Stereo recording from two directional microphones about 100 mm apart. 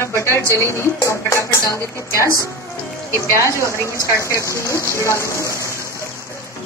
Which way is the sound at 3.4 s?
30° left (ahead or behind).